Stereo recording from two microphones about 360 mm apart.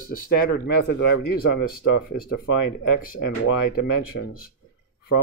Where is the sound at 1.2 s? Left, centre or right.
Left.